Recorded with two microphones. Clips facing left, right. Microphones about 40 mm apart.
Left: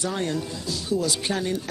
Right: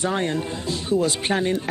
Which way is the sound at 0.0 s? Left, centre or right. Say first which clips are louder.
Right 4 dB; right.